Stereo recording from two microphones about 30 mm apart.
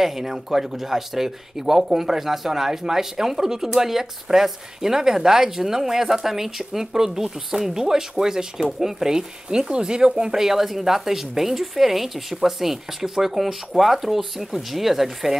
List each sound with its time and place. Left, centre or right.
0.0 s speech: centre
10.3 s speech: centre